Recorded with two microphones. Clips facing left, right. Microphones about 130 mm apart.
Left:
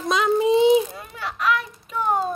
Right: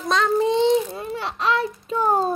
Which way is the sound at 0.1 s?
5° left (ahead or behind).